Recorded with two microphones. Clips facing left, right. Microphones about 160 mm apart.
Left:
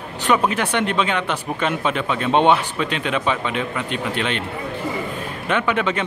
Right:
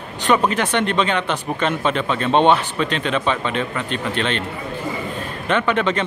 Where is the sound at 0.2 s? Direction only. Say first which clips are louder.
Right 1 dB; 10° left (ahead or behind).